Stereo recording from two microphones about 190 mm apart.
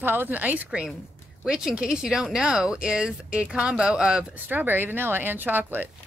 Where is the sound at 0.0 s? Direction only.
10° right (ahead or behind).